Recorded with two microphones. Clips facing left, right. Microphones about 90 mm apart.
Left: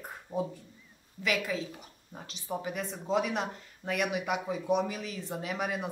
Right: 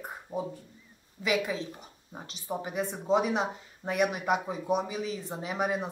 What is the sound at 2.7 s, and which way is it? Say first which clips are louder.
Speech: right 5 dB; centre (ahead or behind).